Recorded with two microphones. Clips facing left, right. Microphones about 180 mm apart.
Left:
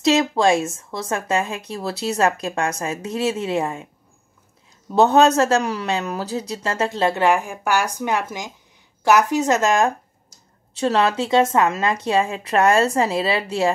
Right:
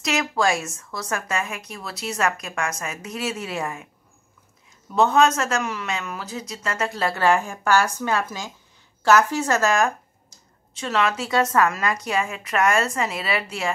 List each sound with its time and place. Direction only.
0.0 s a man's voice: 30° left (ahead or behind)
4.9 s a man's voice: 35° left (ahead or behind)